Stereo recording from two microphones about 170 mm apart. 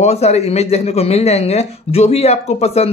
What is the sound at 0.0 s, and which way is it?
Speech, 40° left (ahead or behind).